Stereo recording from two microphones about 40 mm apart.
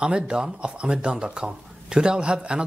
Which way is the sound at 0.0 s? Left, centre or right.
Right.